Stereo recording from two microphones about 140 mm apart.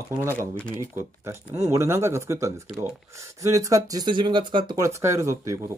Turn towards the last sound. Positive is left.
turn(degrees=-20)  # may be behind; listen again after turning